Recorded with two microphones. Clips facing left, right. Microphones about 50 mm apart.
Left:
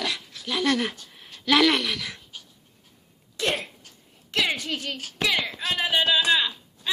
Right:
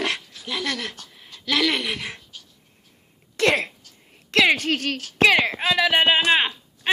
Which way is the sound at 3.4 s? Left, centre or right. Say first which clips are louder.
Right 7 dB; right.